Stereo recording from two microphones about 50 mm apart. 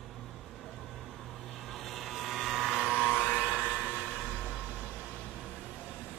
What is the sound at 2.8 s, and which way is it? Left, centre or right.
Vehicle, left.